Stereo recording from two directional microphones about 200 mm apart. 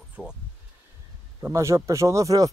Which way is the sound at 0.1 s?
5° right (ahead or behind).